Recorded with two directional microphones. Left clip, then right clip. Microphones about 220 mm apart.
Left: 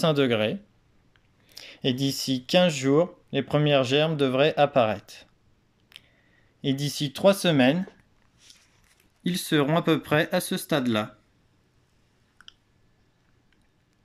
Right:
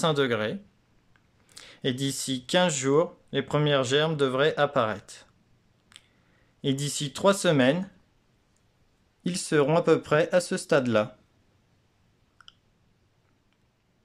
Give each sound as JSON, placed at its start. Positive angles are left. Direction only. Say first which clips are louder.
{"t": 0.0, "sound": "speech", "louder": "left 2 dB", "side_deg": 0}
{"t": 5.9, "sound": "scissors", "louder": "left 4 dB", "side_deg": 0}
{"t": 6.6, "sound": "speech", "louder": "left 1 dB", "side_deg": 0}
{"t": 9.2, "sound": "speech", "louder": "even", "side_deg": -5}